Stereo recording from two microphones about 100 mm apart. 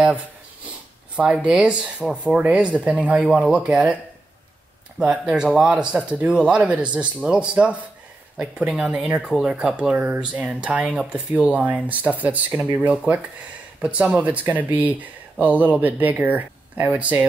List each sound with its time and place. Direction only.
1.1 s speech: 10° right (ahead or behind)
5.1 s speech: 5° right (ahead or behind)